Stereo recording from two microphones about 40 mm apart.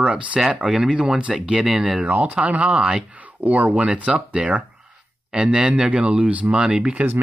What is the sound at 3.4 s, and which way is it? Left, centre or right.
Speech, right.